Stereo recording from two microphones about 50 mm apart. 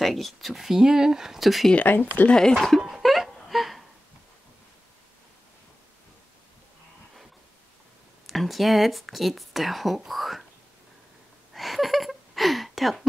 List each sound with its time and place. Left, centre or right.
0.0 s speech: centre
1.9 s speech: left
2.2 s speech: centre
2.8 s wail: centre
8.3 s speech: centre
11.5 s a sound: centre